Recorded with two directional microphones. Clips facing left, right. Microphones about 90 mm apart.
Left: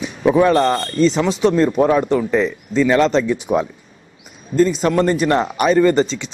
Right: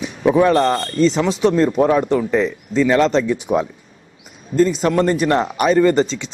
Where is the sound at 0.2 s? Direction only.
20° left (ahead or behind).